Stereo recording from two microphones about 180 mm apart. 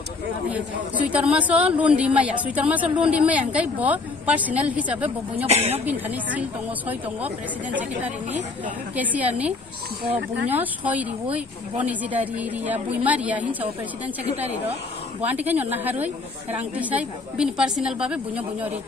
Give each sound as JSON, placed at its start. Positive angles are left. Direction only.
{"t": 0.5, "sound": "a man's voice", "side_deg": -10}
{"t": 5.5, "sound": "a woman's voice", "side_deg": -35}
{"t": 5.9, "sound": "a man's voice", "side_deg": -10}
{"t": 15.3, "sound": "a man's voice", "side_deg": -10}